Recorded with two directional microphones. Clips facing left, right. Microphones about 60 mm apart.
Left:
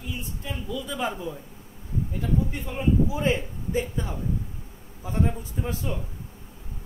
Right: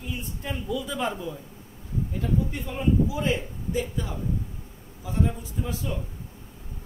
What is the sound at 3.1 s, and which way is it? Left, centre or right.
A man's voice, left.